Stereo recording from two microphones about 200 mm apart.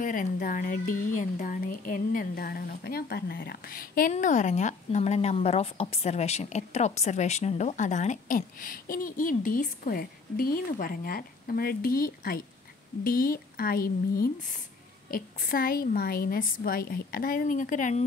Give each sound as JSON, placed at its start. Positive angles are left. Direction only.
{"t": 0.0, "sound": "speech", "side_deg": 40}